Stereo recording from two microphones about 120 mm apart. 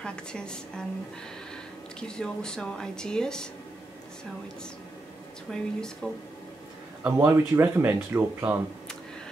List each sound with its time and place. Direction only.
0.0 s speech: 5° left (ahead or behind)
2.0 s speech: 5° left (ahead or behind)
5.5 s speech: 5° left (ahead or behind)
7.0 s speech: 15° right (ahead or behind)